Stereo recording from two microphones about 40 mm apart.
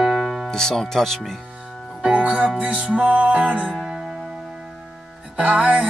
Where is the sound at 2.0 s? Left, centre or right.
Right.